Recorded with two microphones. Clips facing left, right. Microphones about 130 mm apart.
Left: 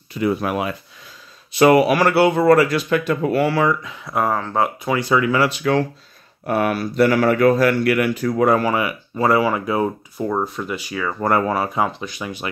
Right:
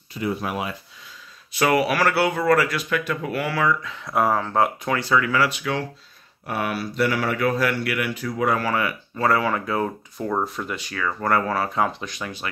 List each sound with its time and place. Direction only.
0.1 s speech: 70° left (ahead or behind)
1.5 s speech: 25° left (ahead or behind)
4.0 s speech: centre (ahead or behind)
4.9 s speech: 20° left (ahead or behind)
5.6 s speech: 45° left (ahead or behind)
8.5 s speech: 15° left (ahead or behind)
11.8 s speech: 5° left (ahead or behind)